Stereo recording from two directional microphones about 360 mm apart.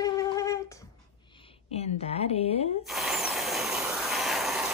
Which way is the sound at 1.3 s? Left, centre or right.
Centre.